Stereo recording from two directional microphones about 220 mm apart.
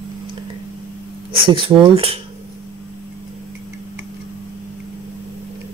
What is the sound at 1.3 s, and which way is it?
Speech, 25° right (ahead or behind).